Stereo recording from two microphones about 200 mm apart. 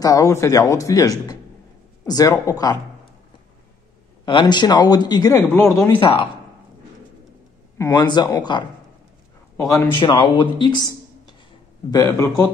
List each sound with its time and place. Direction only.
0.0 s a man's voice: 15° left (ahead or behind)
4.3 s speech: 25° left (ahead or behind)
7.7 s a man's voice: 15° left (ahead or behind)